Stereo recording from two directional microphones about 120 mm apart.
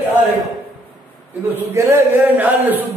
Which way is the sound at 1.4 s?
20° right (ahead or behind).